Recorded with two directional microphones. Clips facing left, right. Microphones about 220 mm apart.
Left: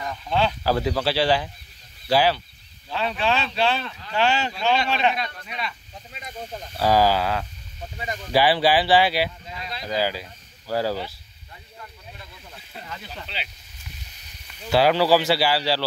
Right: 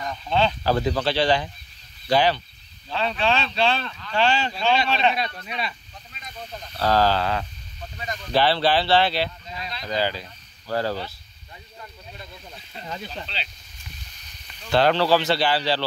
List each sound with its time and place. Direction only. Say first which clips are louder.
0.1 s speech: right 1 dB; 10° left (ahead or behind)
5.1 s speech: right 2 dB; 30° right (ahead or behind)
6.8 s speech: left 1 dB; 10° left (ahead or behind)
13.3 s speech: left 1 dB; 10° left (ahead or behind)
14.5 s speech: left 1 dB; 5° left (ahead or behind)